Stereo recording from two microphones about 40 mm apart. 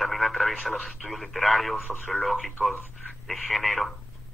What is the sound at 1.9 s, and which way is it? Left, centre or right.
Speech, left.